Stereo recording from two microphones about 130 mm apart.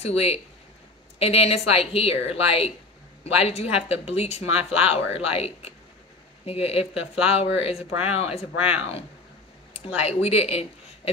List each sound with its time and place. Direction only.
0.0 s a woman's voice: 50° left (ahead or behind)
8.5 s speech: 10° right (ahead or behind)
9.9 s a woman's voice: 50° left (ahead or behind)